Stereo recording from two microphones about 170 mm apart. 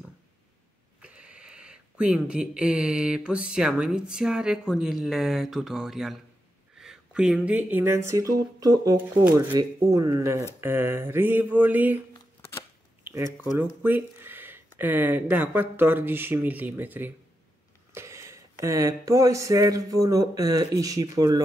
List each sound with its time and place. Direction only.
1.0 s speech: 5° right (ahead or behind)
12.4 s shuffling cards: 15° left (ahead or behind)
13.0 s a sound: 15° right (ahead or behind)
14.2 s speech: 10° right (ahead or behind)